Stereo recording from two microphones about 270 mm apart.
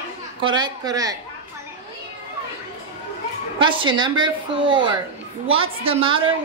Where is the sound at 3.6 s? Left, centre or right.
Centre.